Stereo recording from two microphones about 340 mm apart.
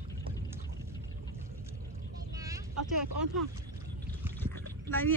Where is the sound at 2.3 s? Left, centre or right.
Centre.